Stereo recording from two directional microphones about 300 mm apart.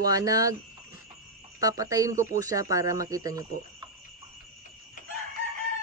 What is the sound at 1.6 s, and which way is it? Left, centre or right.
Speech, centre.